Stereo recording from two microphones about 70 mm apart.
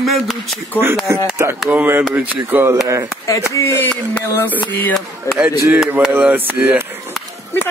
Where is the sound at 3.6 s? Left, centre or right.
Left.